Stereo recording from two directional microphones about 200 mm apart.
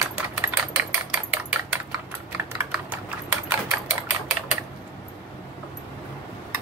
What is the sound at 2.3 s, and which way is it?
Typing, 10° right (ahead or behind).